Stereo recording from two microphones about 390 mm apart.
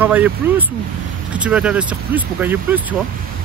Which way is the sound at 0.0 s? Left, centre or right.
Centre.